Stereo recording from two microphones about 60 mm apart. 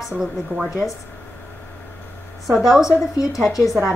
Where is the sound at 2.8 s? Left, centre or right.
Left.